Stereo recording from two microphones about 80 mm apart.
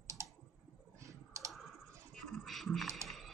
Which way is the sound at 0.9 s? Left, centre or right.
Right.